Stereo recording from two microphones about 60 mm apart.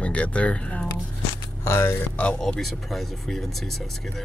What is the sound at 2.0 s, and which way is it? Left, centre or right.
Speech, left.